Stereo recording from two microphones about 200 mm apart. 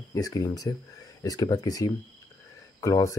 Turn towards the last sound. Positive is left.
turn(degrees=15)  # may be behind; listen again after turning